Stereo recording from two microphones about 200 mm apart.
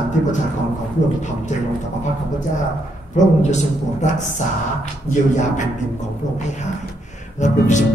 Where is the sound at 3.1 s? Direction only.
35° left (ahead or behind).